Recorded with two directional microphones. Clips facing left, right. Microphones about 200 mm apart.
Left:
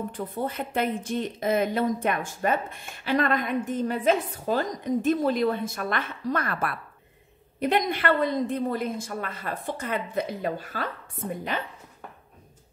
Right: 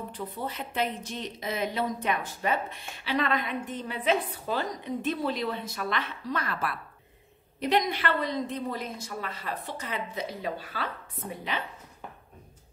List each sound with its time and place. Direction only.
0.1 s speech: 50° left (ahead or behind)